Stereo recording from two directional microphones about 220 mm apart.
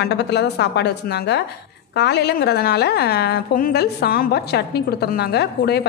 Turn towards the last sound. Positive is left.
turn(degrees=45)  # may be behind; listen again after turning